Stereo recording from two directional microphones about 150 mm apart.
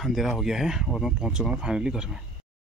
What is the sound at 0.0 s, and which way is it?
Speech, centre (ahead or behind).